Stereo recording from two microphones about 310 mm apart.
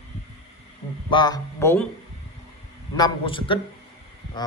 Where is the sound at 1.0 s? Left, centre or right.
Centre.